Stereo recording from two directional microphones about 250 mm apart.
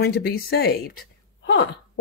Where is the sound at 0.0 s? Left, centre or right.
Left.